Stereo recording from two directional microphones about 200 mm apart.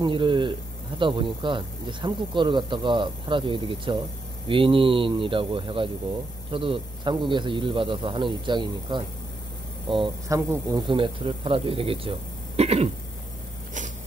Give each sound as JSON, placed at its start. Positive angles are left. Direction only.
{"t": 0.0, "sound": "speech", "side_deg": -25}